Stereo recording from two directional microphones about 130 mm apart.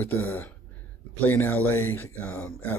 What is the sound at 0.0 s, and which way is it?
Speech, 15° left (ahead or behind).